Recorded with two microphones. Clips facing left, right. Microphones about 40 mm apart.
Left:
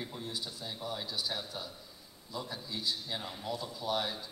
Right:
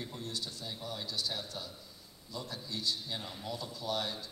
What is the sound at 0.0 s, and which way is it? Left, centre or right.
A man's voice, centre.